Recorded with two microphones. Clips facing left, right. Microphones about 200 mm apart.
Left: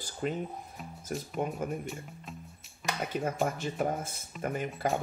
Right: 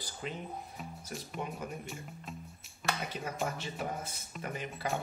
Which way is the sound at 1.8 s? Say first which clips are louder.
Left 3 dB; centre (ahead or behind).